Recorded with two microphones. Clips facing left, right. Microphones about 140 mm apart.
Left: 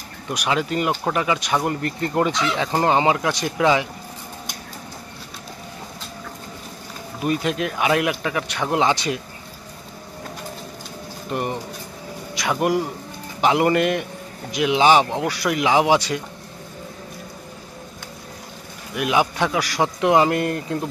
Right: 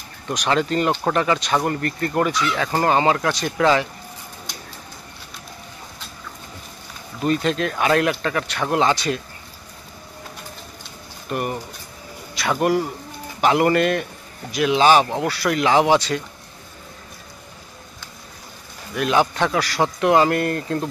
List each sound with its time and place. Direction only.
0.3 s speech: 10° left (ahead or behind)
7.2 s speech: 15° left (ahead or behind)
11.2 s speech: 20° left (ahead or behind)
18.9 s speech: 10° left (ahead or behind)